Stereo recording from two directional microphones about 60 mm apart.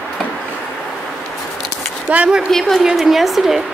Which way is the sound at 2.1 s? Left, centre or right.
Right.